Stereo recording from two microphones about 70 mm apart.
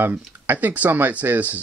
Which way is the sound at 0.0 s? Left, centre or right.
Right.